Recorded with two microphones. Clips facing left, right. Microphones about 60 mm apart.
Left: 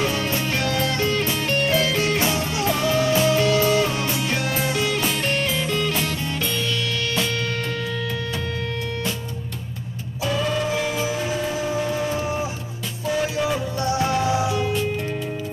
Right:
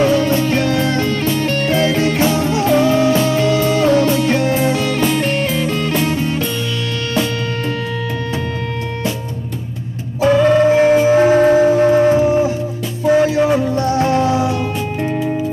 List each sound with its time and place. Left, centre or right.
0.0 s music: right
3.9 s music: right
5.2 s music: centre
10.2 s music: right